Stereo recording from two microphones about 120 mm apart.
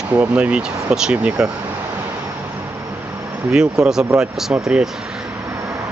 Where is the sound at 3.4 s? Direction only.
5° right (ahead or behind).